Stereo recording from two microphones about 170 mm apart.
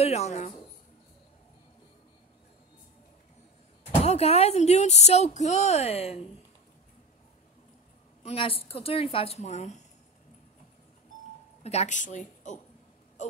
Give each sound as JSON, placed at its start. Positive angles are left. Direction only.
{"t": 0.0, "sound": "speech", "side_deg": 40}
{"t": 3.8, "sound": "speech", "side_deg": 35}
{"t": 8.2, "sound": "speech", "side_deg": 35}
{"t": 11.6, "sound": "a woman's voice", "side_deg": 40}